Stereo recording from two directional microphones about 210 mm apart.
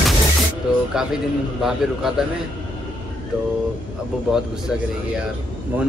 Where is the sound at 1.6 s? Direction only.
Centre (ahead or behind).